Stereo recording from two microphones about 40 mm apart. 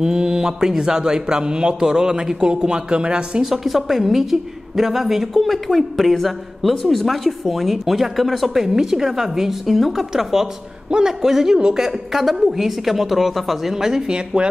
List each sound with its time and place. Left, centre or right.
0.0 s a man's voice: centre
3.4 s a woman's voice: centre
8.6 s a man's voice: centre
14.1 s speech: right